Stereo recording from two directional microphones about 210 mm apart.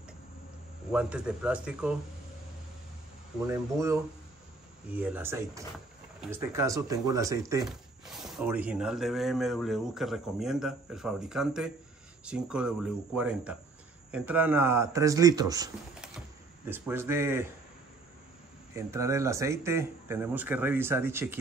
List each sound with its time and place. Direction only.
0.9 s speech: 5° right (ahead or behind)
3.4 s speech: 15° right (ahead or behind)
8.0 s speech: centre (ahead or behind)
18.8 s speech: 15° right (ahead or behind)